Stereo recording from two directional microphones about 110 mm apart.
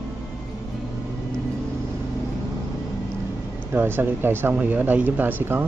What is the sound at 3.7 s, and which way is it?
Speech, 20° right (ahead or behind).